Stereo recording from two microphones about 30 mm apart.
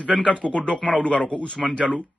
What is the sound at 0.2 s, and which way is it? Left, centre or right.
Speech, left.